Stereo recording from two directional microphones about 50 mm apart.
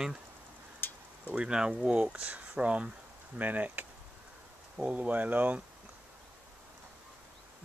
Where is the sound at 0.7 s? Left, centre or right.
Left.